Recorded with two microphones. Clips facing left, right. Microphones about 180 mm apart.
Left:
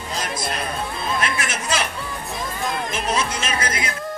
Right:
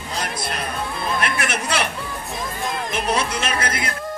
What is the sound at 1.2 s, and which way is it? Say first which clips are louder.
Chatter: right 2 dB; 60° right (ahead or behind).